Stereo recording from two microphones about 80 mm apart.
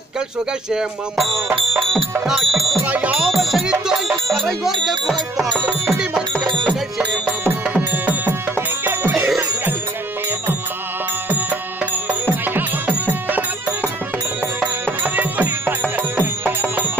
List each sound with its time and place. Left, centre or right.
0.7 s music: centre
2.8 s music: centre
5.9 s music: centre; by 9.1 s right
11.2 s music: right
14.9 s music: right